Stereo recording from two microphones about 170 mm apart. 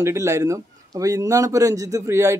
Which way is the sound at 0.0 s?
15° right (ahead or behind).